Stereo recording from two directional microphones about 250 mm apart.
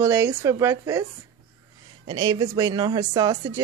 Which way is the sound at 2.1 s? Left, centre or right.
Centre.